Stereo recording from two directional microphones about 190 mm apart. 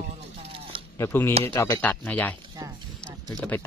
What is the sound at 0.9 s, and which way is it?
Speech, 15° left (ahead or behind).